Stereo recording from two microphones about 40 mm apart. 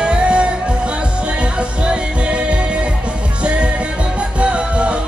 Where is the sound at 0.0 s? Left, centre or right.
Right.